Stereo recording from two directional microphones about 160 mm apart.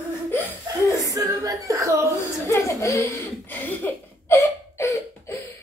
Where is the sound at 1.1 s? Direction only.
20° right (ahead or behind).